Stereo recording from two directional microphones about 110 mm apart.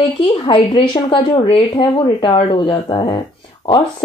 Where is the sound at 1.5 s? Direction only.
45° left (ahead or behind).